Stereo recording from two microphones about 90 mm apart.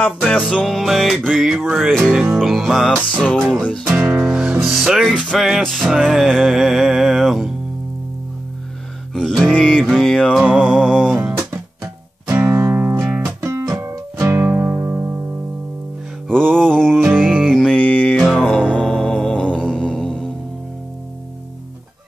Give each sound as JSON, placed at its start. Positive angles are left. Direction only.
{"t": 0.0, "sound": "music", "side_deg": 10}
{"t": 3.9, "sound": "music", "side_deg": -20}
{"t": 9.1, "sound": "music", "side_deg": 5}
{"t": 11.1, "sound": "music", "side_deg": -20}
{"t": 11.5, "sound": "music", "side_deg": -35}
{"t": 13.5, "sound": "music", "side_deg": -35}
{"t": 16.5, "sound": "music", "side_deg": 5}
{"t": 17.0, "sound": "music", "side_deg": -20}
{"t": 17.5, "sound": "music", "side_deg": 5}
{"t": 18.4, "sound": "mantra", "side_deg": 5}